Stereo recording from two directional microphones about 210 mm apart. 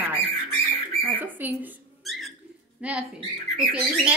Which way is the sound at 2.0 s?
Centre (ahead or behind).